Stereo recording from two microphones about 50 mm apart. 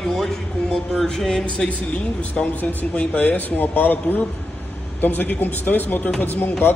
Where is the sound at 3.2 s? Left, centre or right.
Left.